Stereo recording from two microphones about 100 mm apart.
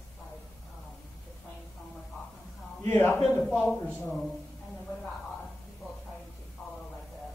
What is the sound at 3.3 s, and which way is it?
Speech, 5° left (ahead or behind).